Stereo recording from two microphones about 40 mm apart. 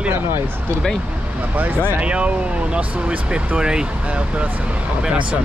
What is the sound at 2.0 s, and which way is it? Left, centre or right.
Speech, right.